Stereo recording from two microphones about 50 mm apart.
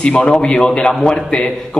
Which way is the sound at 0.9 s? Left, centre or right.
Centre.